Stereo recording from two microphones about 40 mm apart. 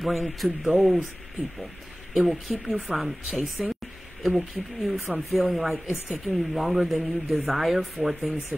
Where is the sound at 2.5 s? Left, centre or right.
Centre.